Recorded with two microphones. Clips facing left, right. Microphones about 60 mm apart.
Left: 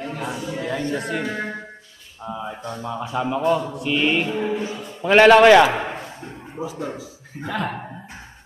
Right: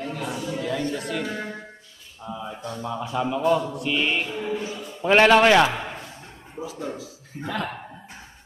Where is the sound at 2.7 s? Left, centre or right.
Centre.